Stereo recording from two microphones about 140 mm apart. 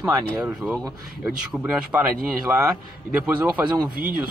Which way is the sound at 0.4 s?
5° right (ahead or behind).